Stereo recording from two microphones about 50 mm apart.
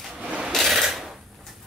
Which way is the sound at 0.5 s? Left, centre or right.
Centre.